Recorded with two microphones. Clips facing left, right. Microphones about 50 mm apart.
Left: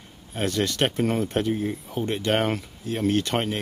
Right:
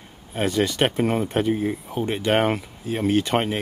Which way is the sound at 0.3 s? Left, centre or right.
Centre.